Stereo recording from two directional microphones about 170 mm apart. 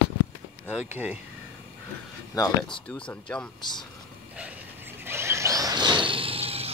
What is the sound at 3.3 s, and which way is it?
Speech, 5° left (ahead or behind).